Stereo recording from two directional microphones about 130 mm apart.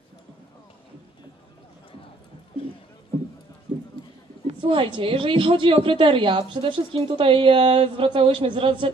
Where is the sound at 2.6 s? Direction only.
45° left (ahead or behind).